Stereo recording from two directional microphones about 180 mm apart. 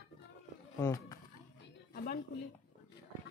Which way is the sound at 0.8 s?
20° left (ahead or behind).